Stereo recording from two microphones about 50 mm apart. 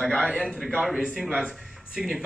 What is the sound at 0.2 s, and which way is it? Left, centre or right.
Speech, centre.